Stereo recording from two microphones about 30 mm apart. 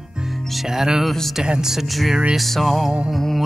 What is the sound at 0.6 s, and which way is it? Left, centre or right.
Music, centre.